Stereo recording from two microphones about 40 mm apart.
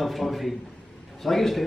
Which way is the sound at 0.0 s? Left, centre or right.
Centre.